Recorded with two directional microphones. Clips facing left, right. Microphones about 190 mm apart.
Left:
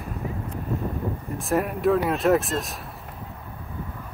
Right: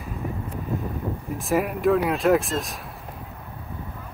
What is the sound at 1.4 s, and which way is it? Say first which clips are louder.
Speech: right 1 dB; centre (ahead or behind).